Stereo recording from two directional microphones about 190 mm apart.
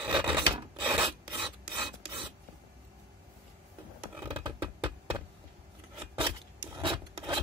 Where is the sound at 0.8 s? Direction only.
5° right (ahead or behind).